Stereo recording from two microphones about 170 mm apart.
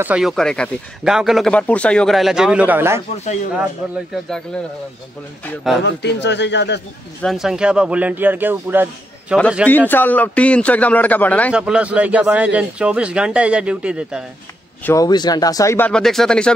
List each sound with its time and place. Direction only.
0.0 s speech: 5° right (ahead or behind)
5.9 s speech: 90° left
7.2 s speech: centre (ahead or behind)
9.7 s a man's voice: 10° left (ahead or behind)
11.5 s speech: 5° right (ahead or behind)
14.9 s a man's voice: 20° left (ahead or behind); by 16.5 s 5° left (ahead or behind)